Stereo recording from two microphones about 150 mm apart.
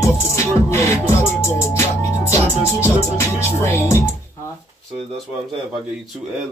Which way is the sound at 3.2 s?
15° left (ahead or behind).